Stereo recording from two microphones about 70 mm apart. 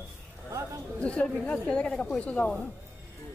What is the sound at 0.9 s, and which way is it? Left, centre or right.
A woman's voice, centre.